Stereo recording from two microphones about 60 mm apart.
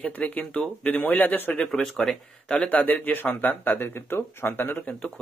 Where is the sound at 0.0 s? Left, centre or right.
Left.